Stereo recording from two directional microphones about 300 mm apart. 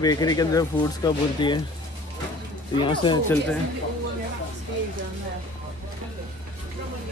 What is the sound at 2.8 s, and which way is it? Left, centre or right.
Speech, centre.